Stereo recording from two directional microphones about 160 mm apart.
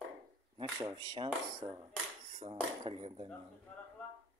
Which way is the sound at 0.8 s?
25° right (ahead or behind).